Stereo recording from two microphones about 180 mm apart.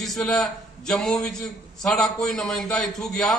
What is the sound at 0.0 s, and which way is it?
A man's voice, centre (ahead or behind).